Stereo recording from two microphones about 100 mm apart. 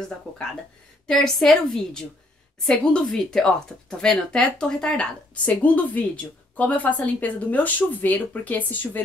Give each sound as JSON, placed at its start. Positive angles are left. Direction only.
{"t": 1.0, "sound": "a woman's voice", "side_deg": 5}